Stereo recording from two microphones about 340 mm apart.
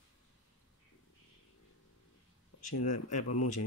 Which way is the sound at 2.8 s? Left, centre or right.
Left.